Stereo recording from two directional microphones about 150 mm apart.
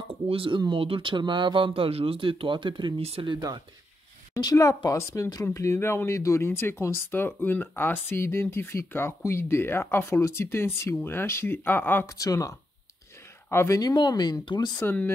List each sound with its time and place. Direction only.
0.1 s speech: 35° right (ahead or behind)
4.3 s speech: 25° left (ahead or behind)
14.8 s speech: 15° left (ahead or behind)